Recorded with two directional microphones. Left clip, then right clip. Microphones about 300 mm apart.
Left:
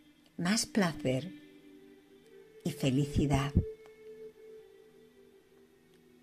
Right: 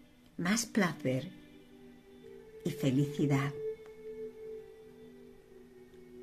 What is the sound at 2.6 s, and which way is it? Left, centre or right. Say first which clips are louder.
Speech: even; centre.